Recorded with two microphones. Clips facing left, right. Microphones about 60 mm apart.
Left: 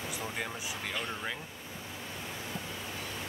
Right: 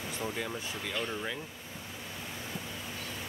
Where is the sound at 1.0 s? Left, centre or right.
Centre.